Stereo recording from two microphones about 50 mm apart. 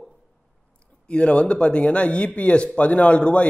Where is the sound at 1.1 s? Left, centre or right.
Left.